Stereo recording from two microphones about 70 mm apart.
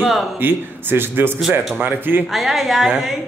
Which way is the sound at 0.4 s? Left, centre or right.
Right.